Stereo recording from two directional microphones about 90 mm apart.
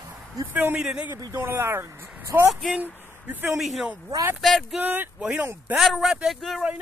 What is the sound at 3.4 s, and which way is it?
Speech, centre (ahead or behind).